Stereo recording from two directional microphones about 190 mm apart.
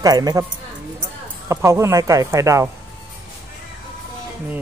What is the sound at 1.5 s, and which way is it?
Speech, 15° right (ahead or behind).